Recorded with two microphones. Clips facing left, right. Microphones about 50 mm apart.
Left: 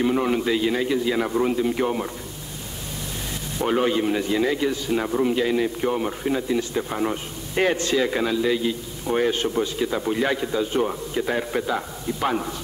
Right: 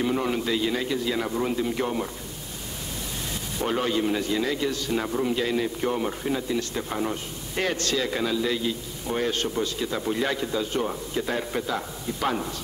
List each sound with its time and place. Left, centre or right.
0.0 s speech: centre
3.6 s speech: centre